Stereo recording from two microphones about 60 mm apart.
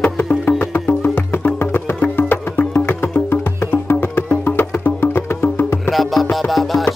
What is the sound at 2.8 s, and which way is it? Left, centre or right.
Music, left.